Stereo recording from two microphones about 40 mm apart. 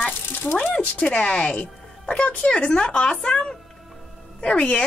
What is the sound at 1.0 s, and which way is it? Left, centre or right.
Speech, left.